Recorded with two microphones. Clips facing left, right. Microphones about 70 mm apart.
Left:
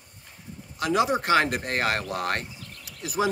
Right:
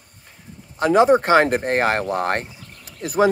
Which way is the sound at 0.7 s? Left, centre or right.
Right.